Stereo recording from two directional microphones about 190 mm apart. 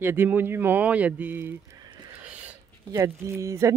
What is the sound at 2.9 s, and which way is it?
Speech, 15° right (ahead or behind).